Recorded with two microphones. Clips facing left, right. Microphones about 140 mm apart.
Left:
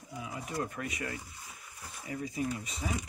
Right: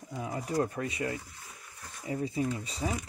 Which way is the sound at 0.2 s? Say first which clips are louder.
Right 6 dB; 35° right (ahead or behind).